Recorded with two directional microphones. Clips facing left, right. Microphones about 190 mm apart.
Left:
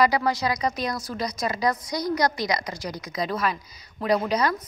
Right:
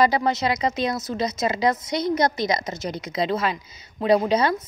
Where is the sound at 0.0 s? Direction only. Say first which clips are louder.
Right 2 dB; 25° right (ahead or behind).